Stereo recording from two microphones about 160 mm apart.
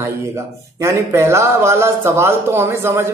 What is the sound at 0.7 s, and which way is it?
Speech, 20° right (ahead or behind).